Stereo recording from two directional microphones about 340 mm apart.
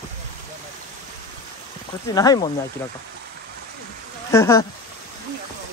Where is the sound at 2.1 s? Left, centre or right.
Centre.